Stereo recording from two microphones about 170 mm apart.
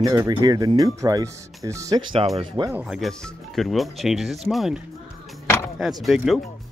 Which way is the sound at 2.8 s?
Centre (ahead or behind).